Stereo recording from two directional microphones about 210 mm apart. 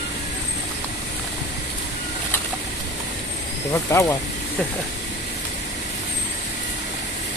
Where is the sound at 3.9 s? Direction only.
15° left (ahead or behind).